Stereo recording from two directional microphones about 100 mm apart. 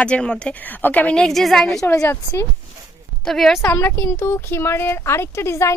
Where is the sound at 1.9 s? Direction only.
30° left (ahead or behind).